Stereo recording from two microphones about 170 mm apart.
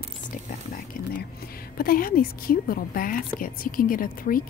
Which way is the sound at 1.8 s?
60° left (ahead or behind).